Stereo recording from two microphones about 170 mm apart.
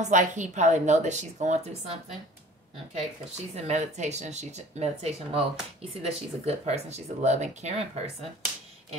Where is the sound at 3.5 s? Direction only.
45° right (ahead or behind).